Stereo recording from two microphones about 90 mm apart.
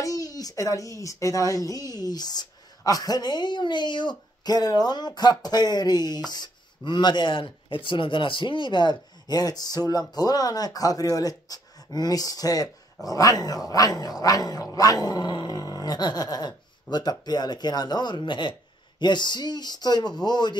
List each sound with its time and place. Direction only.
0.0 s speech: 40° left (ahead or behind)
15.0 s speech: 55° left (ahead or behind)